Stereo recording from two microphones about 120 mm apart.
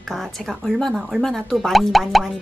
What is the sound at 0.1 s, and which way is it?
Speech, centre (ahead or behind).